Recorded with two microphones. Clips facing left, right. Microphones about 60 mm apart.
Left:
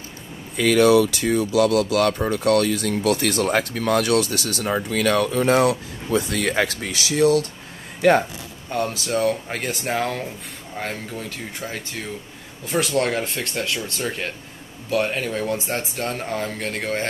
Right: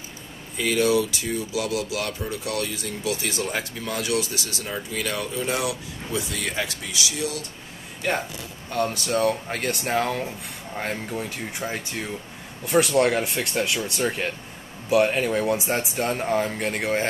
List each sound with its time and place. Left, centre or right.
0.6 s speech: left
8.8 s speech: centre
10.8 s speech: centre